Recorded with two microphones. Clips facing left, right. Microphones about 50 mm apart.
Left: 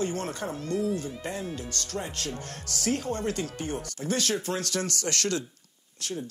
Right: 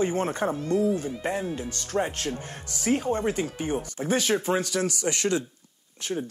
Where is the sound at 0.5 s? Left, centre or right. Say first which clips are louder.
Right 2 dB; centre.